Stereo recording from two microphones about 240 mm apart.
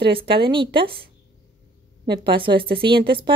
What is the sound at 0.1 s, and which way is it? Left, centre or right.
Speech, right.